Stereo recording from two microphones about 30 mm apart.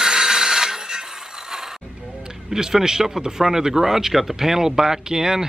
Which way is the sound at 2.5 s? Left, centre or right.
Centre.